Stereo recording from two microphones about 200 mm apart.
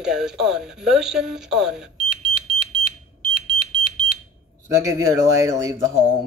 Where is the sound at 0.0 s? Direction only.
5° right (ahead or behind).